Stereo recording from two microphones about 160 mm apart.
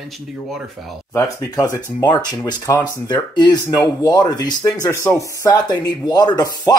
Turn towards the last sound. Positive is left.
turn(degrees=25)  # may be behind; listen again after turning